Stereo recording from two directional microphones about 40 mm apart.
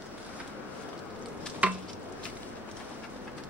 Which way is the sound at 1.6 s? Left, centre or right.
Right.